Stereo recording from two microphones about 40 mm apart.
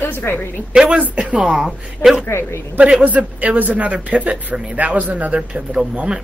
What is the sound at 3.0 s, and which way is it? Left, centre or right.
A man's voice, right.